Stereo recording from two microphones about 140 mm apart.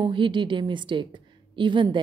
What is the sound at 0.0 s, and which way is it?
A woman's voice, 35° right (ahead or behind).